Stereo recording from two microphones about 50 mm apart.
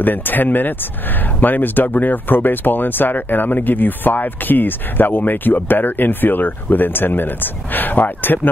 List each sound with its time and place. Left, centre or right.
0.0 s speech: left